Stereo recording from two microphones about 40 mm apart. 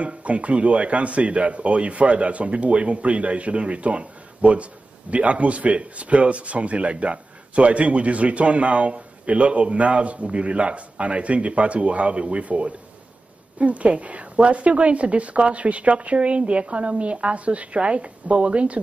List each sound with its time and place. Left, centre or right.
0.0 s a woman's voice: right